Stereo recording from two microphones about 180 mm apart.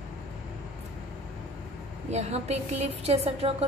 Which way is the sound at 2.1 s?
40° right (ahead or behind).